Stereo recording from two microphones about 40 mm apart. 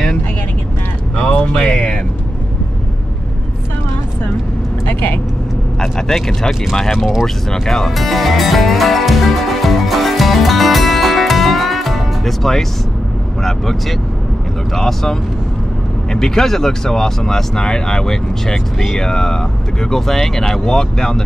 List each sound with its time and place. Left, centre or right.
1.1 s a sound: left
1.7 s music: left
4.8 s vehicle: left
5.8 s speech: centre
7.5 s speech: centre
7.9 s music: centre
13.4 s speech: centre